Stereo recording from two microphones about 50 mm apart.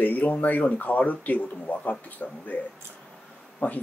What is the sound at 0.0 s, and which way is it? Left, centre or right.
Speech, left.